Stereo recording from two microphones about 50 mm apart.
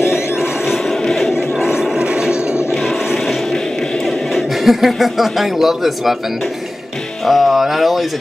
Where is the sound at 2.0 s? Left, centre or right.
Centre.